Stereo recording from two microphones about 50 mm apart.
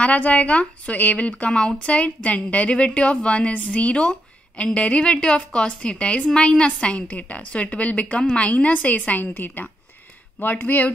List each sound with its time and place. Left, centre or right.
0.0 s a woman's voice: left